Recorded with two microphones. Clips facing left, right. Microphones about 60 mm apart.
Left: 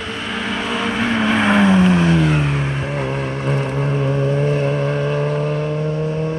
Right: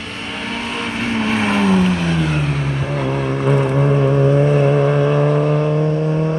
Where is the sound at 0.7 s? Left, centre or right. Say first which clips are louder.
Left 2 dB; centre.